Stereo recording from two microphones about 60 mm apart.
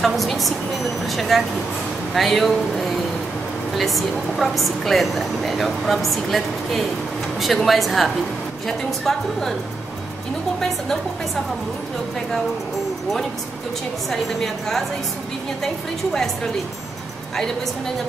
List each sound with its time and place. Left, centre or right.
0.0 s a woman's voice: centre
14.1 s a woman's voice: centre